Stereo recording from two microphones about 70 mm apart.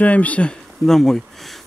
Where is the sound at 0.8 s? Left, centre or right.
Centre.